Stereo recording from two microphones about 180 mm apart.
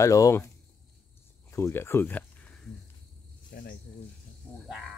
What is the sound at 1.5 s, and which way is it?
Speech, 15° left (ahead or behind).